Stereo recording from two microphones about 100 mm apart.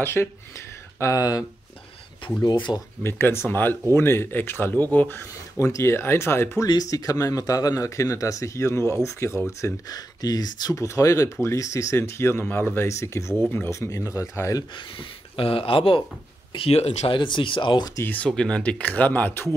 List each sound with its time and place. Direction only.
0.0 s speech: 20° left (ahead or behind)
2.4 s speech: 50° left (ahead or behind)
3.0 s speech: 25° left (ahead or behind)
6.7 s speech: 40° left (ahead or behind)
15.0 s speech: 65° left (ahead or behind)
16.5 s speech: 80° left
17.2 s speech: 55° left (ahead or behind)
18.0 s speech: 15° left (ahead or behind)